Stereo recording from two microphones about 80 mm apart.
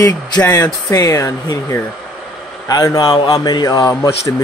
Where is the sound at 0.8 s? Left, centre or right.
Left.